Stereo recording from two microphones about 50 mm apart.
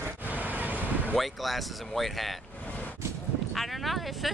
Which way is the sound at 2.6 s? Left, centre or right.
Left.